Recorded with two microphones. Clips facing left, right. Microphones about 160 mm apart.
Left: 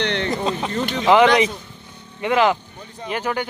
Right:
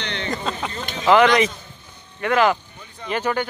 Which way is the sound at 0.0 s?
65° left (ahead or behind).